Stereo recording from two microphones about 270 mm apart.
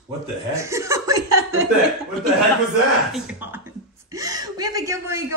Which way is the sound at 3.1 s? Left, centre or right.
Centre.